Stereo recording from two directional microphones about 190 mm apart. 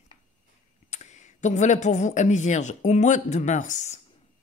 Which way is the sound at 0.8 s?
40° left (ahead or behind).